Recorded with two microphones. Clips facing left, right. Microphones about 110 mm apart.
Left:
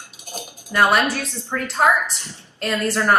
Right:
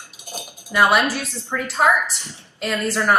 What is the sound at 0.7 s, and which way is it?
A woman's voice, 5° right (ahead or behind).